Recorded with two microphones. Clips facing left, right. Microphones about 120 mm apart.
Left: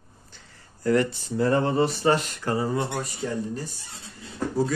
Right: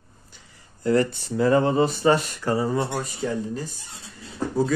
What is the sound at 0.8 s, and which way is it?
Speech, 25° right (ahead or behind).